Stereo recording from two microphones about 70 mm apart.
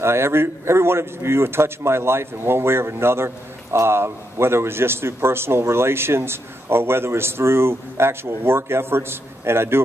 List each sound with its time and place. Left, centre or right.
0.0 s a man's voice: right